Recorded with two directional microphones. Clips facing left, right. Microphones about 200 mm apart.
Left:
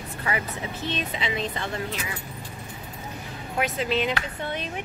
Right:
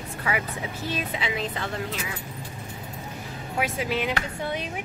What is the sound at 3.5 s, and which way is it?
A woman's voice, 10° right (ahead or behind).